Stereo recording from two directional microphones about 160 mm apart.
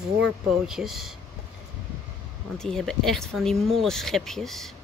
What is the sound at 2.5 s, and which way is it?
Speech, 5° left (ahead or behind).